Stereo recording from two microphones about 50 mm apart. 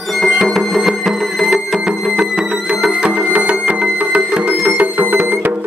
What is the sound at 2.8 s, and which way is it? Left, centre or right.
Music, right.